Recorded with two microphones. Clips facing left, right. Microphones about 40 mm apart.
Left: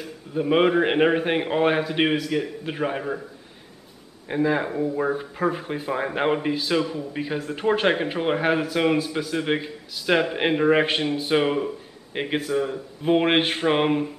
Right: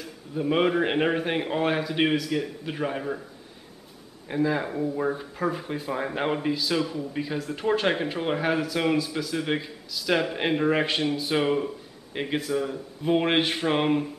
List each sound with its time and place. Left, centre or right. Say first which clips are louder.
0.0 s a man's voice: left 3 dB; left
4.3 s a man's voice: left 3 dB; left